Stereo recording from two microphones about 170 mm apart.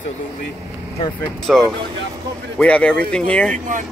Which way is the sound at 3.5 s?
50° right (ahead or behind).